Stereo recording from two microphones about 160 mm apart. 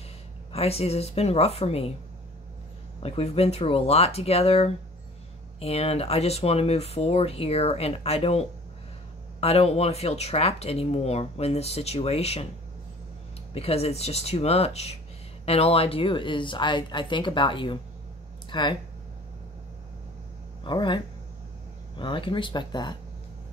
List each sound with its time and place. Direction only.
0.5 s speech: 40° left (ahead or behind)
3.0 s speech: 40° left (ahead or behind)
13.5 s speech: 40° left (ahead or behind)
20.6 s speech: 30° left (ahead or behind)